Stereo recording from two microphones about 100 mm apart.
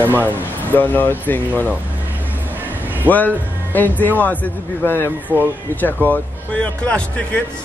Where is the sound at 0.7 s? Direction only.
20° left (ahead or behind).